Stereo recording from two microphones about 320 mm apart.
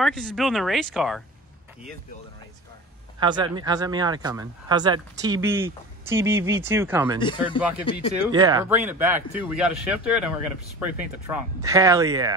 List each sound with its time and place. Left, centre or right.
0.0 s speech: centre
3.2 s speech: centre
7.2 s speech: centre
8.3 s speech: centre